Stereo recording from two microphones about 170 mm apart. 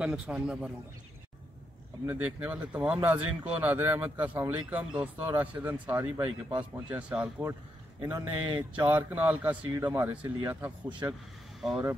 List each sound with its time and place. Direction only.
0.0 s a man's voice: 5° right (ahead or behind)
2.0 s speech: 10° right (ahead or behind)
8.1 s speech: 25° right (ahead or behind)
8.8 s speech: 10° right (ahead or behind)